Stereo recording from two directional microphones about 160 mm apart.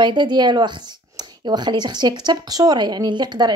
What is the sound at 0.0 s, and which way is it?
Speech, 30° right (ahead or behind).